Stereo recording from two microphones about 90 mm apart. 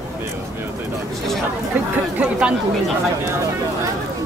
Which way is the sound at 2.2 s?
10° right (ahead or behind).